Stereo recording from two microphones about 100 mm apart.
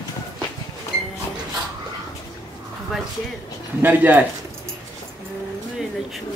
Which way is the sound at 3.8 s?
20° right (ahead or behind).